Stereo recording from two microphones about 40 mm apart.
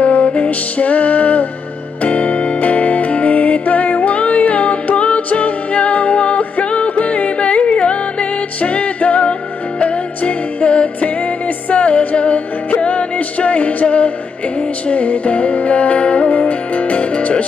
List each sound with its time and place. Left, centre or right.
0.0 s music: left